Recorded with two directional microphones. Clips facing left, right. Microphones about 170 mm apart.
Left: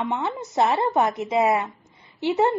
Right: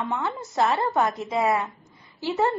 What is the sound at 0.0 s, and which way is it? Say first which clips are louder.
A woman's voice: left 2 dB; 25° left (ahead or behind).